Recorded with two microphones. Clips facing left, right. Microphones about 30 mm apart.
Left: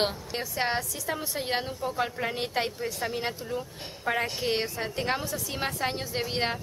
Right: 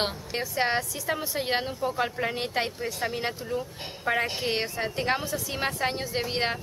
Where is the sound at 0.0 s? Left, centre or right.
Centre.